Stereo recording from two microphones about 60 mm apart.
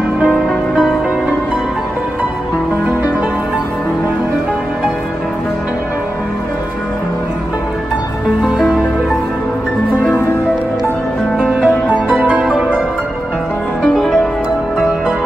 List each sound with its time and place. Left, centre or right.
11.3 s music: centre